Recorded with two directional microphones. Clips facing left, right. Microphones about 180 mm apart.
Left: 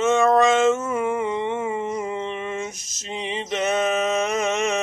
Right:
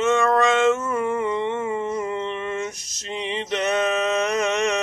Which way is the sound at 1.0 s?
5° left (ahead or behind).